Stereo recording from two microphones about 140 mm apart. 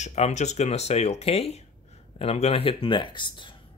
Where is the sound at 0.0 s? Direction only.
55° left (ahead or behind).